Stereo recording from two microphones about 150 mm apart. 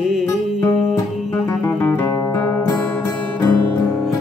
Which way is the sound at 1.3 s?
10° left (ahead or behind).